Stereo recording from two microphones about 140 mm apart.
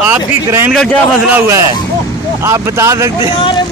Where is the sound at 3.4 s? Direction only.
35° left (ahead or behind).